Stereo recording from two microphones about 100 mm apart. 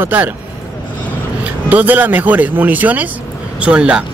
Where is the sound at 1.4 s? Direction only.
15° right (ahead or behind).